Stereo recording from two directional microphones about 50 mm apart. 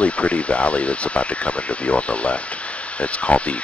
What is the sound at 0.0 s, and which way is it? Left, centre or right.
Speech, left.